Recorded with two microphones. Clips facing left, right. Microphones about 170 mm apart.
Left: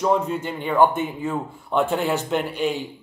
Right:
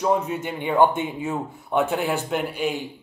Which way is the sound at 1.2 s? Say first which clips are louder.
Left 1 dB; 10° right (ahead or behind).